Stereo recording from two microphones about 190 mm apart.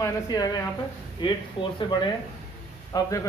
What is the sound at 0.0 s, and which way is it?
Speech, 20° left (ahead or behind).